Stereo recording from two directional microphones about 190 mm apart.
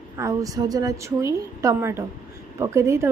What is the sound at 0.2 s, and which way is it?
Female singing, 15° right (ahead or behind).